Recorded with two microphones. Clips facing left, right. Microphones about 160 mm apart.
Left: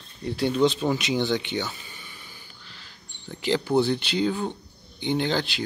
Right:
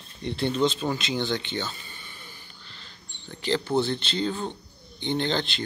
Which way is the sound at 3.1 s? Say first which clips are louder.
Left 2 dB; 15° left (ahead or behind).